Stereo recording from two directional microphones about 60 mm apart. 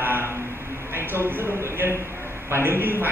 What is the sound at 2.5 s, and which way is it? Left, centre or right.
Speech, right.